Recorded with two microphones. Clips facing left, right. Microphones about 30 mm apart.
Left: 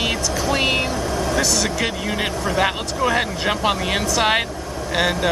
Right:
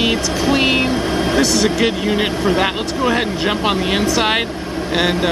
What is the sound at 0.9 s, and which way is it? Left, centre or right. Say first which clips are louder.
Vehicle: right 5 dB; right.